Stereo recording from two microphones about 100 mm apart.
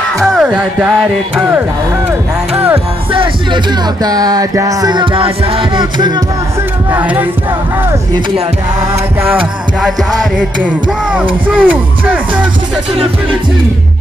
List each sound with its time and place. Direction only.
0.3 s music: 5° right (ahead or behind)
3.1 s speech: 60° right (ahead or behind)
4.0 s music: 40° right (ahead or behind)
4.9 s music: 55° right (ahead or behind)
6.9 s music: 15° right (ahead or behind)
9.2 s music: 20° right (ahead or behind)
9.8 s music: 5° right (ahead or behind)